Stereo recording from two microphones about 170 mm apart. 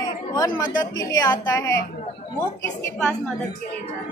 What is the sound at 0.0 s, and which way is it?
Speech, 20° left (ahead or behind).